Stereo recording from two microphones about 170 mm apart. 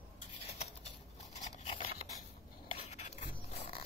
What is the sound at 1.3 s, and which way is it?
Scrape, 40° left (ahead or behind).